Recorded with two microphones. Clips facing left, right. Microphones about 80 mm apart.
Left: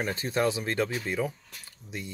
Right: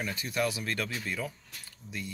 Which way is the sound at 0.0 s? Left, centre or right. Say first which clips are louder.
Left 4 dB; left.